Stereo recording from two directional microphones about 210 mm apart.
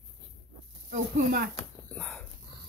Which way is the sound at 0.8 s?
45° right (ahead or behind).